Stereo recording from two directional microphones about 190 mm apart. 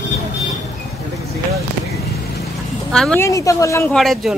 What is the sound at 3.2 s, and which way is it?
Speech, 15° left (ahead or behind).